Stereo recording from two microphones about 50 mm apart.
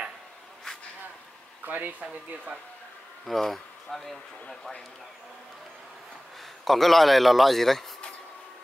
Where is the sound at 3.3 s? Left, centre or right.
Centre.